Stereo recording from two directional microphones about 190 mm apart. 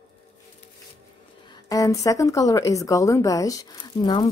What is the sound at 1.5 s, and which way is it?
Speech, 15° left (ahead or behind).